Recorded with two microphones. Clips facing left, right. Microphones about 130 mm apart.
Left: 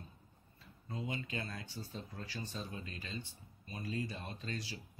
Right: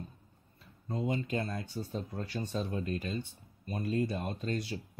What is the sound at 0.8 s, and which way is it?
Speech, 45° right (ahead or behind).